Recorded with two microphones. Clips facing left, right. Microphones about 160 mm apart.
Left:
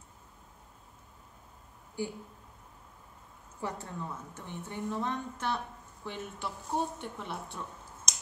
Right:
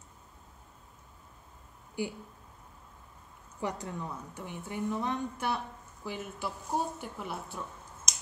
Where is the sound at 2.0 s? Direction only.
15° right (ahead or behind).